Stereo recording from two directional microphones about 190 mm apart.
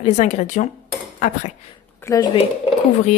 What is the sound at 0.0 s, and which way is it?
Speech, 40° left (ahead or behind).